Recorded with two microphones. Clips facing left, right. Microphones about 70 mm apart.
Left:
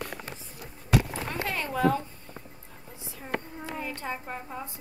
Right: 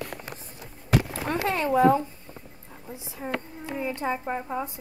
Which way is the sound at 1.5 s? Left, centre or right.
Right.